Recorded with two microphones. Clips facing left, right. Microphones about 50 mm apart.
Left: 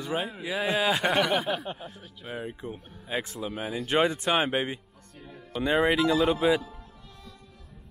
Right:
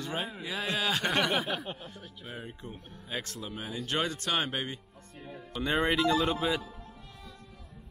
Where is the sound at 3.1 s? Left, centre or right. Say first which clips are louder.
Left 6 dB; centre.